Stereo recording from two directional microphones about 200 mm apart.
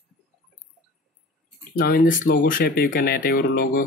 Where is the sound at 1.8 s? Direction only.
45° left (ahead or behind).